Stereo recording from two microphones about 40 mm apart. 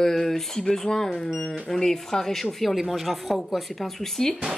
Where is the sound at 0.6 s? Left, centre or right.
Centre.